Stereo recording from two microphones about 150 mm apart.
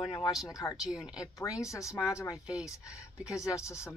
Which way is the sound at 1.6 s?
20° left (ahead or behind).